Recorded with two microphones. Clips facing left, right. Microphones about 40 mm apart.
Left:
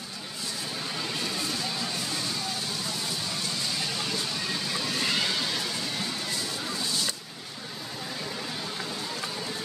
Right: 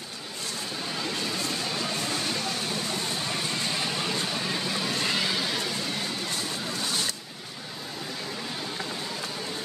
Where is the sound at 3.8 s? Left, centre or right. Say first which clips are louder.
Right 2 dB; right.